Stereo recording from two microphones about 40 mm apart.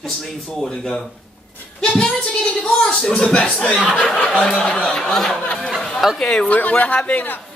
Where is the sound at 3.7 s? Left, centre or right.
Right.